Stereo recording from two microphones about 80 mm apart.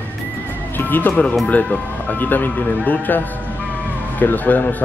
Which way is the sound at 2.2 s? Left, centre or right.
Left.